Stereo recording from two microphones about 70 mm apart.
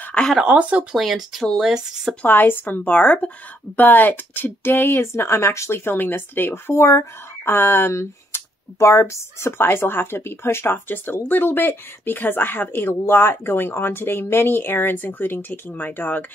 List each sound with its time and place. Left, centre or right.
0.0 s a sound: centre
0.4 s speech: centre
0.9 s speech: centre
2.2 s a woman's voice: left
5.9 s speech: left